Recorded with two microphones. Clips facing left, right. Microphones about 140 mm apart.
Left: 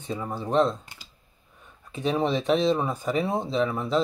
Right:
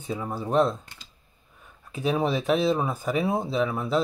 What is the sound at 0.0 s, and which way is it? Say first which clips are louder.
Speech: right 1 dB; 5° right (ahead or behind).